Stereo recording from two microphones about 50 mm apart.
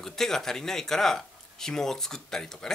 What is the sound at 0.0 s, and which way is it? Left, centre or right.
Speech, centre.